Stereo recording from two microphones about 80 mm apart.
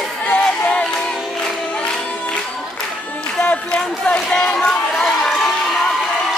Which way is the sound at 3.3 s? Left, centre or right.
Centre.